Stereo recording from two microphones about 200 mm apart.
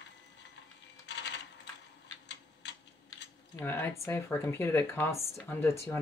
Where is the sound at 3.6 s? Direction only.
10° left (ahead or behind).